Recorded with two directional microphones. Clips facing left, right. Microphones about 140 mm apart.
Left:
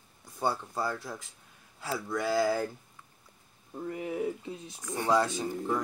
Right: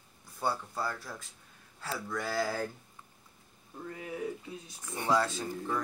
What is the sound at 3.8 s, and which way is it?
Speech, 25° left (ahead or behind).